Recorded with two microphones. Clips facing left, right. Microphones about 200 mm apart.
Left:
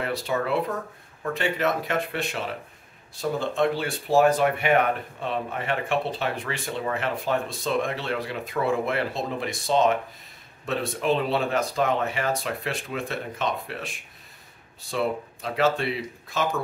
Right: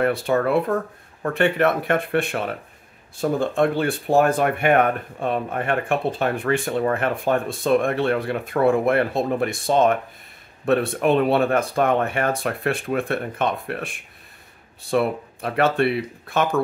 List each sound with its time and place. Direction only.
0.0 s speech: 55° right (ahead or behind)